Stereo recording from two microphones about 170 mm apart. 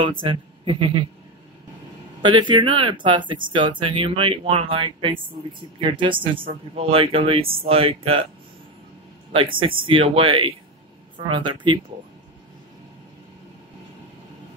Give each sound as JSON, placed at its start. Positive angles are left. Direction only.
{"t": 0.0, "sound": "speech", "side_deg": -30}
{"t": 2.2, "sound": "speech", "side_deg": -30}
{"t": 9.3, "sound": "speech", "side_deg": -30}